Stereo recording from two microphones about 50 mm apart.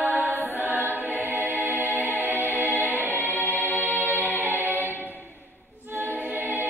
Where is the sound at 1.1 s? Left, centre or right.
Right.